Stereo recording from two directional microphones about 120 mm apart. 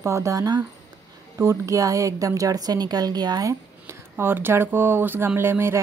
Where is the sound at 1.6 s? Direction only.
30° right (ahead or behind).